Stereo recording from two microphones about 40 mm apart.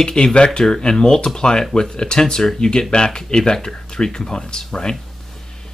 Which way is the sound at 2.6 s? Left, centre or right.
Left.